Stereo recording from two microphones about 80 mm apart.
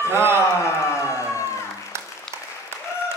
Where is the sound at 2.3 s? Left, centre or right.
Centre.